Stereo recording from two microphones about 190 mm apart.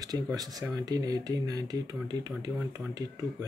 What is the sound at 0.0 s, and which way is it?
Speech, 20° right (ahead or behind).